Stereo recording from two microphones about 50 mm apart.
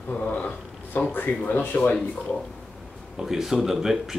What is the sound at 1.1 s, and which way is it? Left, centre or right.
Speech, left.